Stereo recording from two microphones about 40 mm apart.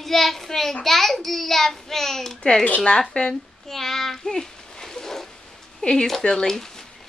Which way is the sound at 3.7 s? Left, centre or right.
Centre.